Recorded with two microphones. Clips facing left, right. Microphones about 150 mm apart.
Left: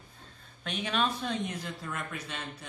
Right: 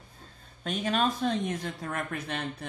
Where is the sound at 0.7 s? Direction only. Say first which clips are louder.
Right 3 dB; 40° right (ahead or behind).